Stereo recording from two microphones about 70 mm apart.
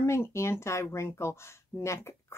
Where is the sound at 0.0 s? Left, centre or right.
Left.